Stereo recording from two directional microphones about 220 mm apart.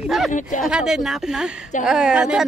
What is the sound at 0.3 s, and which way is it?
Speech, 35° left (ahead or behind).